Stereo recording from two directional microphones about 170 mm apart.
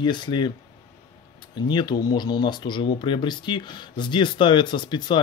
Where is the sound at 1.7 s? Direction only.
25° left (ahead or behind).